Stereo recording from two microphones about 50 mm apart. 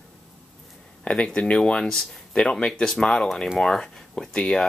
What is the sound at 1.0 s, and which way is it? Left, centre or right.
Speech, left.